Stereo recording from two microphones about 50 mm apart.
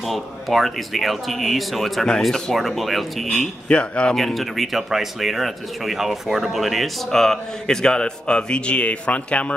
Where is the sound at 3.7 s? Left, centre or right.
Left.